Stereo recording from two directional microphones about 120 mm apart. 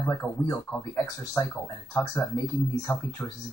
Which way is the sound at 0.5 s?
20° left (ahead or behind).